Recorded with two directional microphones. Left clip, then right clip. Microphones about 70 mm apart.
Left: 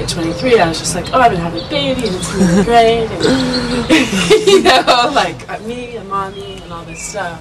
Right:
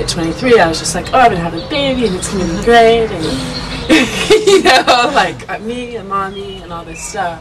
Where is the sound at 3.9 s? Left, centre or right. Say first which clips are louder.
Right 2 dB; centre.